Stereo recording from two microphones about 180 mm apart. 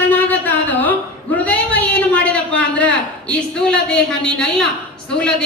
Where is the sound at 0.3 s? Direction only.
10° left (ahead or behind).